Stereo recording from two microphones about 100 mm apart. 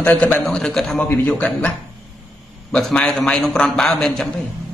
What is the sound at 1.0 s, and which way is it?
Speech, 20° left (ahead or behind).